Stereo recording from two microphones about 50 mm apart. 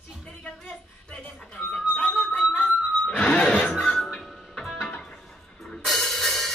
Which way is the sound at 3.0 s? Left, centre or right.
Left.